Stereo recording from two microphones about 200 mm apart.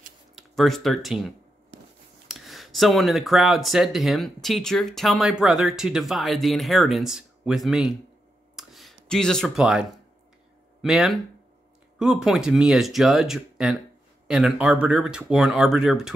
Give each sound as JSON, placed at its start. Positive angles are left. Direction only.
{"t": 0.4, "sound": "speech", "side_deg": 0}
{"t": 1.7, "sound": "scissors", "side_deg": -65}
{"t": 2.2, "sound": "speech", "side_deg": 0}
{"t": 8.5, "sound": "a sound", "side_deg": 0}
{"t": 9.1, "sound": "speech", "side_deg": 5}